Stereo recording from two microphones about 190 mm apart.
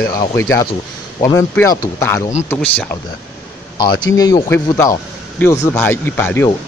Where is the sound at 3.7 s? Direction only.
25° left (ahead or behind).